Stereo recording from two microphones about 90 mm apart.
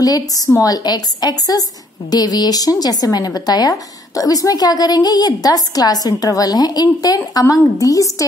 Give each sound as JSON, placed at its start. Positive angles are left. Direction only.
{"t": 0.6, "sound": "a woman's voice", "side_deg": 45}